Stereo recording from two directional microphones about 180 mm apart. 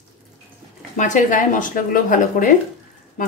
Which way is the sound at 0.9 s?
45° left (ahead or behind).